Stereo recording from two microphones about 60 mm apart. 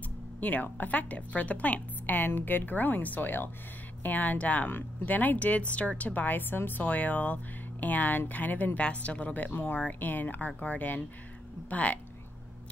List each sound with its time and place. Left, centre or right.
0.4 s speech: left